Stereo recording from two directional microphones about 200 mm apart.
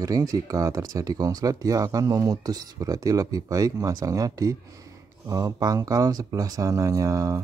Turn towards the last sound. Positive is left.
turn(degrees=-15)  # may be behind; listen again after turning